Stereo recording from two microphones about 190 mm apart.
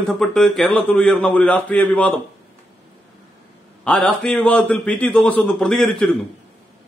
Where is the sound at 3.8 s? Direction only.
5° left (ahead or behind).